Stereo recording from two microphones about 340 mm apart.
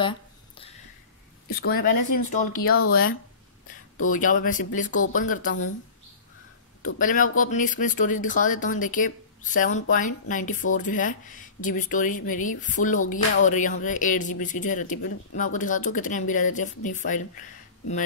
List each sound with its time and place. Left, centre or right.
1.5 s speech: left
7.0 s speech: left